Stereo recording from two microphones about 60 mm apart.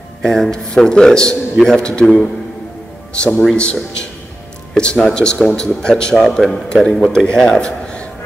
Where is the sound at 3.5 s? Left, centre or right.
Centre.